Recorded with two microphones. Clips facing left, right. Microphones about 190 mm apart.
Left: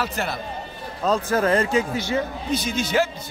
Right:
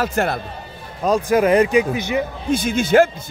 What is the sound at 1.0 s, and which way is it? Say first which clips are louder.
Speech: right 5 dB; 15° right (ahead or behind).